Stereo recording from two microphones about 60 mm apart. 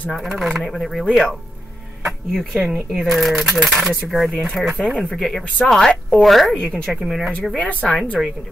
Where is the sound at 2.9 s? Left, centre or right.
Centre.